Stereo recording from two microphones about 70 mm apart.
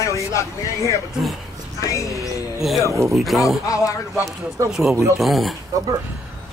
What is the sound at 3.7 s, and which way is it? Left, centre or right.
Speech, left.